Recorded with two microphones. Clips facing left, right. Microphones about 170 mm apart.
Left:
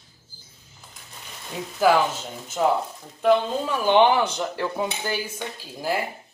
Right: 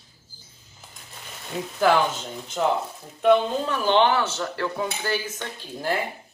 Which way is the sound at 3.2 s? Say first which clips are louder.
Right 1 dB; 5° left (ahead or behind).